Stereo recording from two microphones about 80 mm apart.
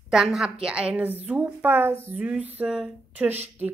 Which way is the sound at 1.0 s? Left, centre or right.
Right.